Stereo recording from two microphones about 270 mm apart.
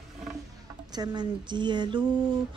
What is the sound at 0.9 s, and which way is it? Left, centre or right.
Speech, centre.